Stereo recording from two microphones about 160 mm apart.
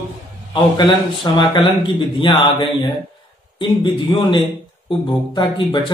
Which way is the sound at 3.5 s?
30° left (ahead or behind).